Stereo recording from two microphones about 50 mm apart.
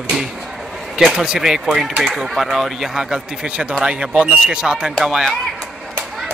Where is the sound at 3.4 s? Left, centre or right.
Right.